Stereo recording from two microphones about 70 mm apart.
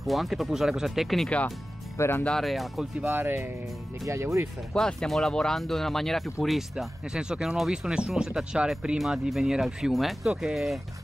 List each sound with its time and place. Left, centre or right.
0.0 s speech: centre
2.0 s speech: left
2.2 s speech: centre
3.1 s speech: right
4.0 s speech: right
4.7 s speech: centre
7.1 s speech: centre